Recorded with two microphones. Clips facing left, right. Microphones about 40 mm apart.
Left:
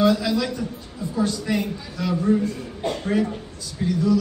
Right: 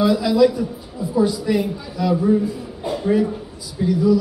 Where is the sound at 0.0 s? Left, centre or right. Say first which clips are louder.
Right 5 dB; centre.